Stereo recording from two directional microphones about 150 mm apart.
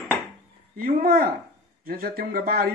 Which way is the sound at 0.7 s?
70° right (ahead or behind).